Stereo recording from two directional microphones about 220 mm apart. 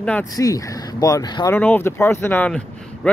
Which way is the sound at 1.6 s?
10° left (ahead or behind).